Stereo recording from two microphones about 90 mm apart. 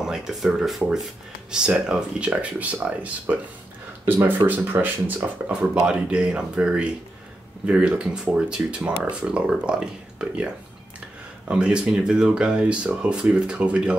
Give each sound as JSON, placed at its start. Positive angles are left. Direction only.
{"t": 0.0, "sound": "speech", "side_deg": -5}
{"t": 11.4, "sound": "speech", "side_deg": -10}